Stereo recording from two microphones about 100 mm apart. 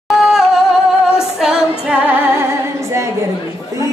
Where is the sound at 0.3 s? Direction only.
5° right (ahead or behind).